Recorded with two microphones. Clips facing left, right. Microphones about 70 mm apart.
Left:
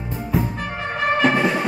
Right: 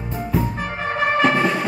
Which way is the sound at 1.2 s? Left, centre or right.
Centre.